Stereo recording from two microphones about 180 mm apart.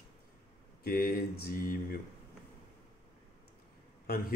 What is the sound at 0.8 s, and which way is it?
Speech, 55° left (ahead or behind).